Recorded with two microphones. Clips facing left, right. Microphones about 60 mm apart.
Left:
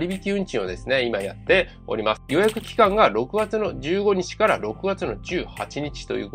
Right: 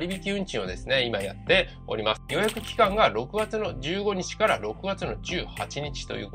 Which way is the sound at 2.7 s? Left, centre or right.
Left.